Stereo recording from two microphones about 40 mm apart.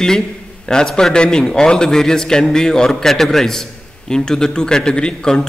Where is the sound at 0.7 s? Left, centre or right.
Centre.